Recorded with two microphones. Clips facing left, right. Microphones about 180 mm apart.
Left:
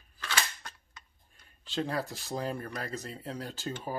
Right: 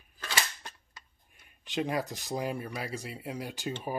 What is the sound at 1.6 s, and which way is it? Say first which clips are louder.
Speech: right 2 dB; 15° right (ahead or behind).